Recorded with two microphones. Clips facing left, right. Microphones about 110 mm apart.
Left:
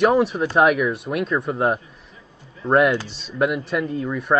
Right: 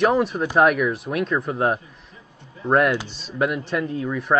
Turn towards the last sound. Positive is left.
turn(degrees=0)  # may be behind; listen again after turning